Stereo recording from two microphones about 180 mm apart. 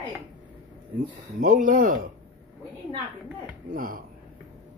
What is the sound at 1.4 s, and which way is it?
Speech, 45° right (ahead or behind).